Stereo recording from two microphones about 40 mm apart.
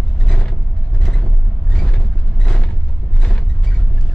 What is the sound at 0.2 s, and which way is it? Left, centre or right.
Vehicle, left.